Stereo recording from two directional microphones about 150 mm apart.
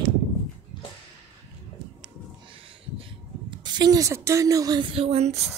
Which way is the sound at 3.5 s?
30° right (ahead or behind).